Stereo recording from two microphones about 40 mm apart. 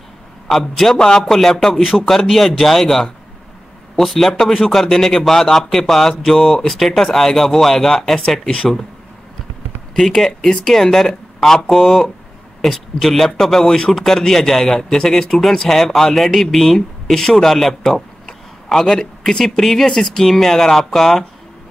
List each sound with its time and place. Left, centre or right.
0.5 s speech: centre
0.9 s speech: centre
1.2 s speech: centre
9.9 s speech: centre